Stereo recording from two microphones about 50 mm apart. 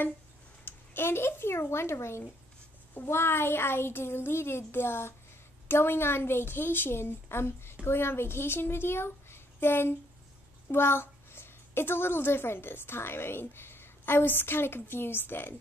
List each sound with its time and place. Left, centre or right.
0.7 s a woman's voice: left